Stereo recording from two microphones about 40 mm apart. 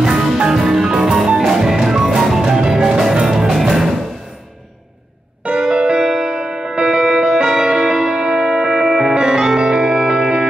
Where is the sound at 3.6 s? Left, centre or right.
Centre.